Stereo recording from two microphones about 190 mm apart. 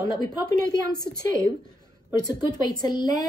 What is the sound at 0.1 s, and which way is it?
Speech, 20° left (ahead or behind).